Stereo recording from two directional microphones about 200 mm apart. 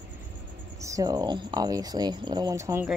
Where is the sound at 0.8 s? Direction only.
15° right (ahead or behind).